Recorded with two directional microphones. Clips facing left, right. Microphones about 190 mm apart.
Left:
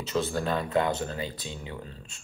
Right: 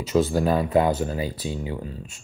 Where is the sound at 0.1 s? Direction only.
20° right (ahead or behind).